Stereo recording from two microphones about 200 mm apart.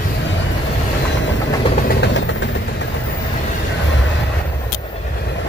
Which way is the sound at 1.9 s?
60° left (ahead or behind).